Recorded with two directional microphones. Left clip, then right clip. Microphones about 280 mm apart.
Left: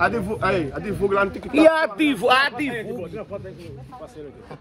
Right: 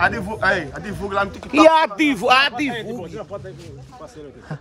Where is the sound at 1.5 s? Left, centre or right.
Right.